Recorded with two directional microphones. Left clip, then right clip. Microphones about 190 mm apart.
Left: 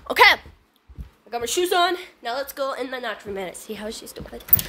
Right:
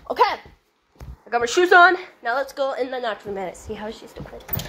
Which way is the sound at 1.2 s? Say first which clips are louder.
Right 5 dB; centre (ahead or behind).